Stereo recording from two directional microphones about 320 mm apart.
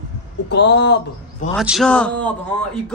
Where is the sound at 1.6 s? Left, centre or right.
Centre.